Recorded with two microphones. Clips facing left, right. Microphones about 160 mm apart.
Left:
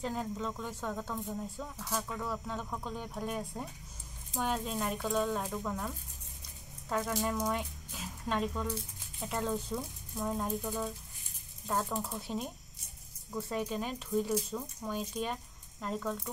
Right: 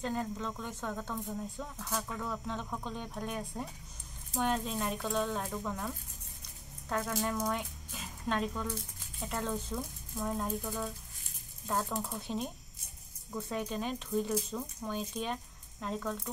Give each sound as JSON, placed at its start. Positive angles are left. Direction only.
{"t": 0.0, "sound": "speech", "side_deg": 5}